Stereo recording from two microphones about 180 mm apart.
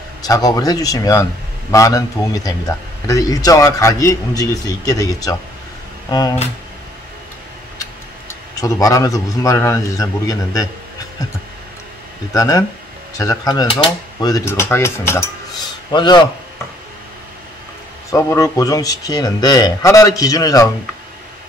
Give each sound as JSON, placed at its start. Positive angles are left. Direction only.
{"t": 0.2, "sound": "a man's voice", "side_deg": 20}
{"t": 8.3, "sound": "a man's voice", "side_deg": 20}
{"t": 12.4, "sound": "a man's voice", "side_deg": 20}
{"t": 14.2, "sound": "cutlery", "side_deg": 15}
{"t": 15.9, "sound": "a man's voice", "side_deg": 25}
{"t": 18.1, "sound": "a man's voice", "side_deg": 15}